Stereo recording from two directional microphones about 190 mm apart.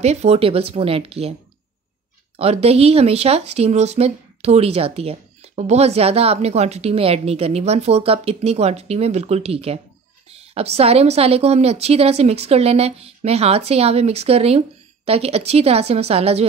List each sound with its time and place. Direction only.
0.0 s speech: 35° right (ahead or behind)
2.3 s speech: 30° right (ahead or behind)